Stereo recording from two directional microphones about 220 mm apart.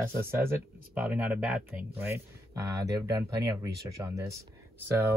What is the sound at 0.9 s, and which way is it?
Speech, 5° right (ahead or behind).